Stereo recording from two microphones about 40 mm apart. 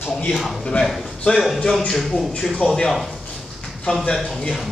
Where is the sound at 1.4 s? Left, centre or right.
Centre.